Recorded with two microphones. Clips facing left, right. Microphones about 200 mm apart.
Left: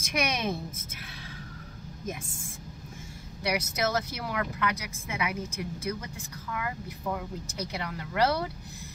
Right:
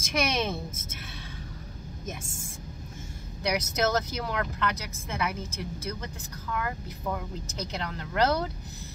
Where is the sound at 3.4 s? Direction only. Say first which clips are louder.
Right 2 dB; 5° left (ahead or behind).